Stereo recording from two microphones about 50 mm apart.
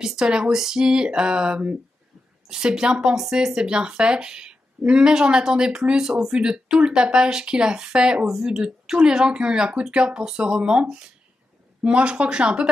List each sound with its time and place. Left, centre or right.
0.0 s speech: centre